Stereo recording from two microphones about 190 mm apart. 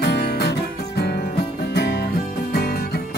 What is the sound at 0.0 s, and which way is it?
Music, 60° left (ahead or behind).